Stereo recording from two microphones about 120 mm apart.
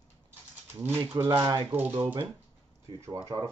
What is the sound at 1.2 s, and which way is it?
Speech, 30° right (ahead or behind).